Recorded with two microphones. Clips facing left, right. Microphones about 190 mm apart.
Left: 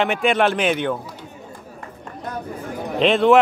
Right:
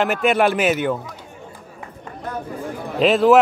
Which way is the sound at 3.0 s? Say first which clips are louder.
Right 1 dB; centre (ahead or behind).